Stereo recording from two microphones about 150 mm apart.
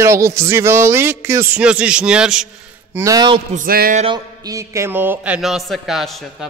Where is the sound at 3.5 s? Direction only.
75° right (ahead or behind).